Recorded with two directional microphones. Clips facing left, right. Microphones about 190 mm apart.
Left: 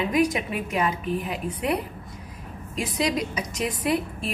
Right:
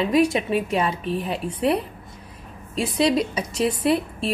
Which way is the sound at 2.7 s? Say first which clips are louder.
Right 5 dB; 30° right (ahead or behind).